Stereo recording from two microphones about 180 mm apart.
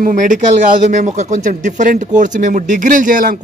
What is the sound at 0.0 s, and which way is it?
Speech, 45° right (ahead or behind).